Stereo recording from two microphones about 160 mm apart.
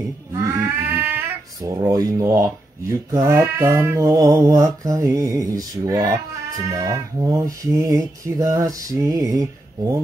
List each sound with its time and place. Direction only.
0.3 s speech: 20° right (ahead or behind)
4.8 s mantra: 20° right (ahead or behind)